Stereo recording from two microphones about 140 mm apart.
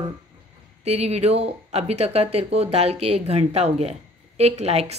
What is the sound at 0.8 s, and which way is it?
A woman's voice, 50° right (ahead or behind).